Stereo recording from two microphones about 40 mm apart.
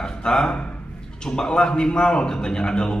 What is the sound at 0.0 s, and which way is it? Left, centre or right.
A man's voice, left.